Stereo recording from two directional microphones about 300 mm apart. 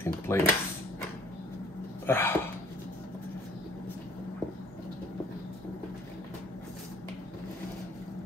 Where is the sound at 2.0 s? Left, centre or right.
Centre.